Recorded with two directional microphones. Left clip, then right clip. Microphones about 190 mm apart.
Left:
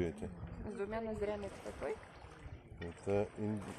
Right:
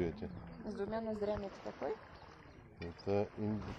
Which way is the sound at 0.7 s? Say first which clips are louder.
Right 1 dB; 45° right (ahead or behind).